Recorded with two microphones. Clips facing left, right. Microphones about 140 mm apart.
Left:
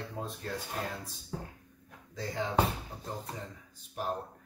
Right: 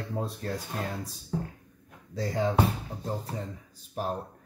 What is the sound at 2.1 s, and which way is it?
Speech, 35° right (ahead or behind).